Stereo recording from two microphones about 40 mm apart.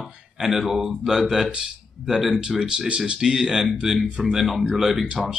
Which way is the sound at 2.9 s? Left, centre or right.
Right.